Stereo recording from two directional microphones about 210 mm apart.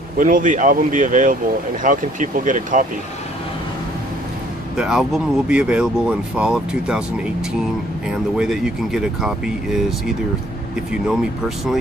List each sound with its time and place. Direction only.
0.2 s speech: 40° right (ahead or behind)
4.7 s speech: 5° right (ahead or behind)